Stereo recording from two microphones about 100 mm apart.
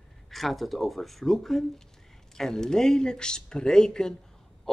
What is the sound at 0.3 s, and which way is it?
Speech, centre (ahead or behind).